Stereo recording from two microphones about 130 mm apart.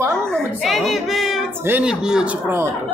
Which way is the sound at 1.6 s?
10° right (ahead or behind).